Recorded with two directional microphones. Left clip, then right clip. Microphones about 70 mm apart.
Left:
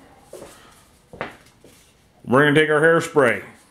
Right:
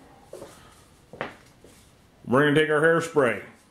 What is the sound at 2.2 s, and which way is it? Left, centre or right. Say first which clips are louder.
Speech: left 5 dB; left.